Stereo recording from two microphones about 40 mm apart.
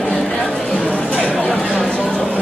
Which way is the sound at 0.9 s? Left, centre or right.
Left.